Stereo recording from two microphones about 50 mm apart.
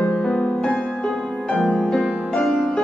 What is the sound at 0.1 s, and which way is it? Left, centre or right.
Music, centre.